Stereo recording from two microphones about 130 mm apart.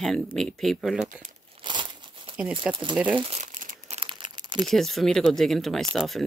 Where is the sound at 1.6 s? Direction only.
35° right (ahead or behind).